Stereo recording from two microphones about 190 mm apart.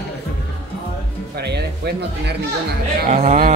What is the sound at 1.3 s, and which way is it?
Music, 60° right (ahead or behind).